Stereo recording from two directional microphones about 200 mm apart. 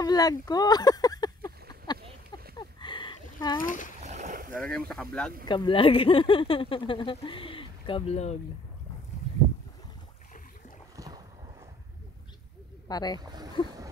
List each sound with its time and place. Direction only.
0.0 s speech: 20° left (ahead or behind)
2.5 s a sound: 25° left (ahead or behind)
3.6 s speech: 40° left (ahead or behind)
4.0 s boat: 35° right (ahead or behind)
4.6 s speech: 5° left (ahead or behind)
5.4 s speech: 20° left (ahead or behind)
11.0 s boat: 15° right (ahead or behind)
12.8 s speech: 20° left (ahead or behind)
13.2 s boat: 20° right (ahead or behind)